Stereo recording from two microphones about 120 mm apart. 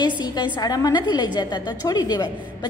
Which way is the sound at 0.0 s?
35° left (ahead or behind).